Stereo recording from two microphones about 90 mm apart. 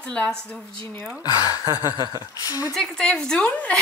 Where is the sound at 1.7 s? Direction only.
45° right (ahead or behind).